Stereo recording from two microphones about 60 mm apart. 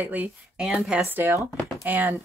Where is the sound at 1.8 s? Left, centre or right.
Right.